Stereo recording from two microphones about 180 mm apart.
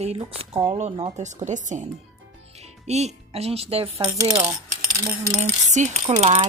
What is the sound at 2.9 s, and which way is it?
Speech, 35° right (ahead or behind).